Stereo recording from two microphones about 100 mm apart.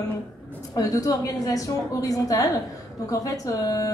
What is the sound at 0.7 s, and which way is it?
A woman's voice, 40° left (ahead or behind).